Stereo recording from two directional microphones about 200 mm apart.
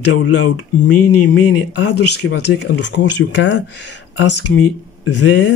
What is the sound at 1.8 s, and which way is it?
Speech, 60° left (ahead or behind).